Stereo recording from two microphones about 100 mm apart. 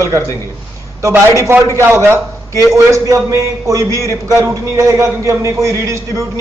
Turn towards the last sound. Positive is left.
turn(degrees=-30)  # may be behind; listen again after turning